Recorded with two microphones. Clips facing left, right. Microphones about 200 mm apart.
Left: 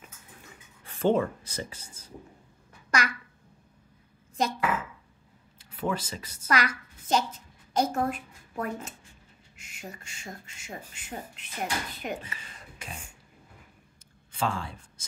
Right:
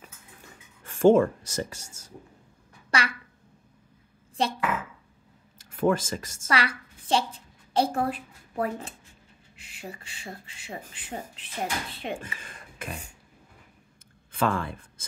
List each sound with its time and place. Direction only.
0.8 s speech: 45° right (ahead or behind)
2.9 s a sound: 30° right (ahead or behind)
4.4 s speech: 30° right (ahead or behind)
5.6 s speech: 50° right (ahead or behind)
6.5 s a woman's voice: 30° right (ahead or behind)
12.2 s speech: 50° right (ahead or behind)
14.3 s speech: 55° right (ahead or behind)